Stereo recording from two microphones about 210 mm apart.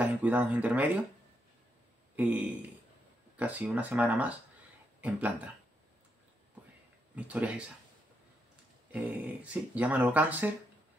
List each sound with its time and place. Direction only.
0.0 s speech: 5° right (ahead or behind)
2.1 s speech: 10° right (ahead or behind)
7.2 s speech: 5° right (ahead or behind)
8.9 s speech: 5° right (ahead or behind)